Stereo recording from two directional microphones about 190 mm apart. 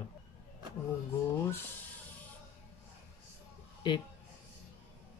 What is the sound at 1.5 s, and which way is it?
Speech, 10° left (ahead or behind).